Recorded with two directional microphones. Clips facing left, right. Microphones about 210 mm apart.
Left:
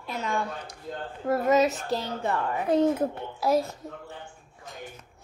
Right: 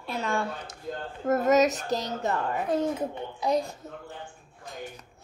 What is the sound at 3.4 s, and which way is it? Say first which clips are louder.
Speech: left 2 dB; 5° left (ahead or behind).